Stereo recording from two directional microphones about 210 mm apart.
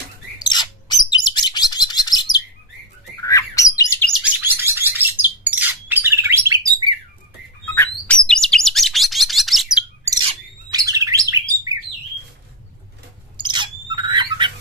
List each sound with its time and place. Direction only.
0.4 s bird: 20° left (ahead or behind)
4.1 s bird: 5° right (ahead or behind)
7.7 s chirp: 10° left (ahead or behind)
10.2 s bird: 20° right (ahead or behind)
13.4 s squawk: 20° right (ahead or behind)